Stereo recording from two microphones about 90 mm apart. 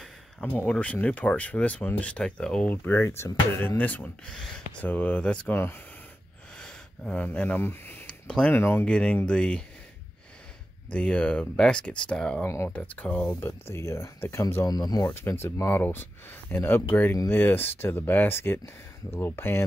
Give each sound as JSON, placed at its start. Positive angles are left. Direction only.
{"t": 0.5, "sound": "speech", "side_deg": 15}
{"t": 2.7, "sound": "speech", "side_deg": 25}
{"t": 6.6, "sound": "speech", "side_deg": 15}
{"t": 8.5, "sound": "speech", "side_deg": 30}
{"t": 8.8, "sound": "speech", "side_deg": 10}
{"t": 10.9, "sound": "speech", "side_deg": 10}
{"t": 13.5, "sound": "speech", "side_deg": 30}
{"t": 14.7, "sound": "speech", "side_deg": 45}
{"t": 15.0, "sound": "speech", "side_deg": 25}